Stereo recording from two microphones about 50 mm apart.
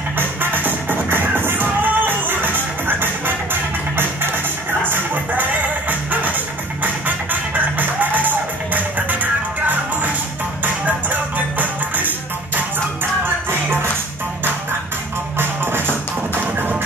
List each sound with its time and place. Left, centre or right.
0.4 s music: right
15.3 s music: right